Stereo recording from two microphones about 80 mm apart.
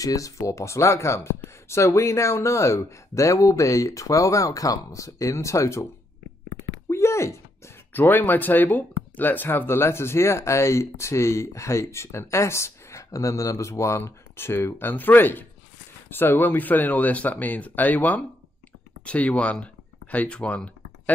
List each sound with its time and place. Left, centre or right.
0.0 s speech: left
6.9 s a sound: left
7.9 s speech: left